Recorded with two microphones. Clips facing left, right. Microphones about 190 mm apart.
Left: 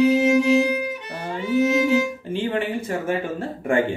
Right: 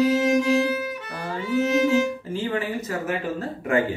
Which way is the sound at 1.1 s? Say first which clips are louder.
Left 3 dB; 25° left (ahead or behind).